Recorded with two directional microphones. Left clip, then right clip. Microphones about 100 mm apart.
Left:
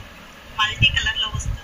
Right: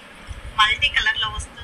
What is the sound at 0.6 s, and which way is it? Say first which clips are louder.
Vehicle: right 1 dB; 25° right (ahead or behind).